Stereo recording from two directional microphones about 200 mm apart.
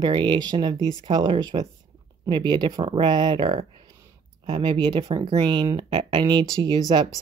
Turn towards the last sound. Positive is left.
turn(degrees=-25)  # may be behind; listen again after turning